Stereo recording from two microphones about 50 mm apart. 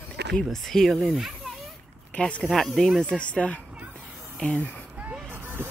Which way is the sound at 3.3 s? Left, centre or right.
Left.